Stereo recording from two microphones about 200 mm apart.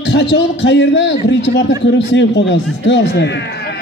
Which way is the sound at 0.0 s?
60° left (ahead or behind).